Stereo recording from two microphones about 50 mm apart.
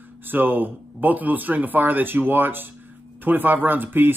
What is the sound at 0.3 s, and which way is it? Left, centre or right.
Speech, right.